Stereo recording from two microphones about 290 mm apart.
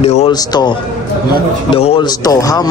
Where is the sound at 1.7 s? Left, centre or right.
Centre.